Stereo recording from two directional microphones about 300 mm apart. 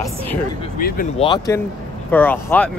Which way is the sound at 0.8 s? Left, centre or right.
Left.